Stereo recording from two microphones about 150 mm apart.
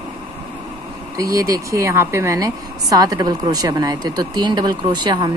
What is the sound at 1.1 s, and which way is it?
A woman's voice, 20° right (ahead or behind).